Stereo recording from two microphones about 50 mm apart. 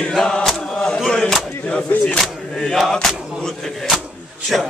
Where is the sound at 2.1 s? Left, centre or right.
Centre.